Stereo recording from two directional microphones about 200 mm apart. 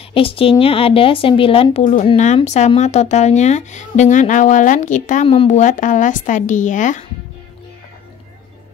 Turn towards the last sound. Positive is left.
turn(degrees=40)  # may be behind; listen again after turning